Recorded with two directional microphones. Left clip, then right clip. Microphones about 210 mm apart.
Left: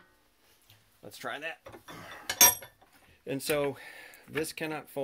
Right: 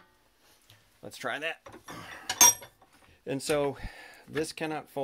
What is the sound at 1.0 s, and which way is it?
Speech, 35° right (ahead or behind).